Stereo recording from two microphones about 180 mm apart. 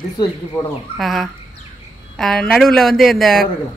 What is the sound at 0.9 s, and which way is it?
Speech, centre (ahead or behind).